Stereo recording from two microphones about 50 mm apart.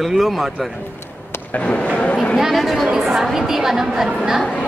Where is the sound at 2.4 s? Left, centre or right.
Centre.